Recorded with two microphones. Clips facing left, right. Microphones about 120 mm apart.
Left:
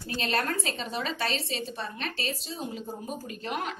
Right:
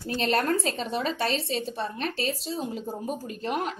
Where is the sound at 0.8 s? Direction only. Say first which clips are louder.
Right 4 dB; 55° right (ahead or behind).